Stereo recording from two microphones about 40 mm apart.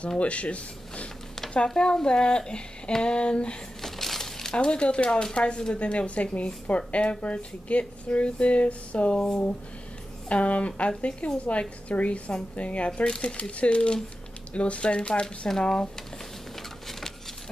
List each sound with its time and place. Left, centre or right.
0.2 s speech: left
1.7 s speech: centre
3.8 s a sound: centre
4.6 s speech: left
9.1 s speech: centre
10.2 s speech: left